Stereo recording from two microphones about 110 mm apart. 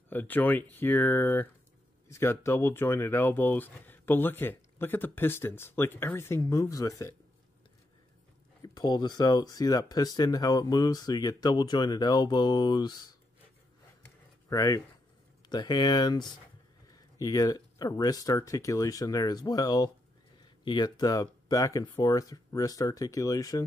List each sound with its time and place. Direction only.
0.1 s speech: 15° left (ahead or behind)
8.6 s speech: 40° left (ahead or behind)
14.5 s speech: 30° left (ahead or behind)